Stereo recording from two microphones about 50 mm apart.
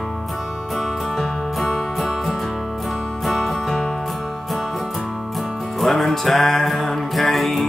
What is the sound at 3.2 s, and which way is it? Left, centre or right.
Music, centre.